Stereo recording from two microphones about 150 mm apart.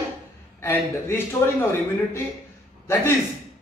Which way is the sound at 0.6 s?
15° left (ahead or behind).